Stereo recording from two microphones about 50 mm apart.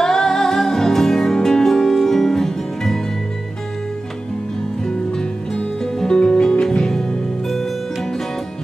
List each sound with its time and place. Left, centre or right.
0.0 s music: centre
5.9 s music: centre